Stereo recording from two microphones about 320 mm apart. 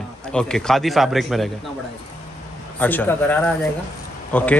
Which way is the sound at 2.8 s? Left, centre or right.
Centre.